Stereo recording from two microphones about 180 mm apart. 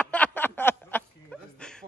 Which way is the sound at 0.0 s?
10° left (ahead or behind).